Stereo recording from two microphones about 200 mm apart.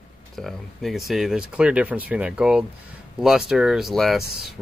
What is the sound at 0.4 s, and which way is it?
Speech, centre (ahead or behind).